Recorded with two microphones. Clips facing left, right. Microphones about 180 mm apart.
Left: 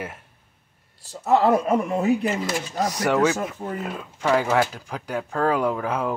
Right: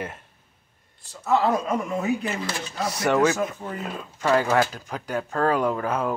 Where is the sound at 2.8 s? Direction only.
10° left (ahead or behind).